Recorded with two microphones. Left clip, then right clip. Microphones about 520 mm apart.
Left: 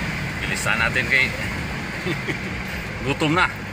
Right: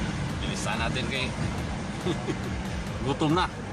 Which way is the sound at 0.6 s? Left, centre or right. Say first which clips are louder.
Left 10 dB; right.